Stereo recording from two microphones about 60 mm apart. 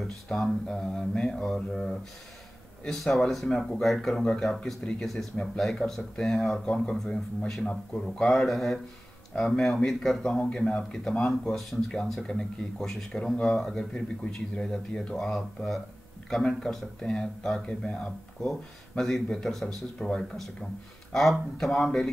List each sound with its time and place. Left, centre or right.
0.3 s a sound: centre
1.2 s speech: centre
3.0 s speech: centre
5.4 s speech: centre